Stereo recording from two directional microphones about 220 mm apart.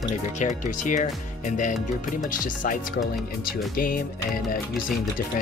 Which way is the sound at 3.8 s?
40° left (ahead or behind).